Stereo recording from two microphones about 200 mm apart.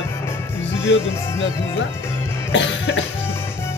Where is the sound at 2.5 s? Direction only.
65° left (ahead or behind).